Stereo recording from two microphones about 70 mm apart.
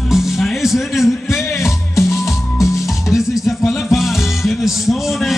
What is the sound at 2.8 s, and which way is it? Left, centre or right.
Music, centre.